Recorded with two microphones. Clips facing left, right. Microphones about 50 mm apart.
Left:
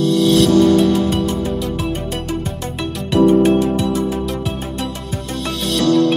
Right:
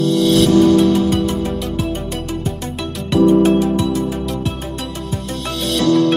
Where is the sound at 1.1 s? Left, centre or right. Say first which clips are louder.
Right 1 dB; centre.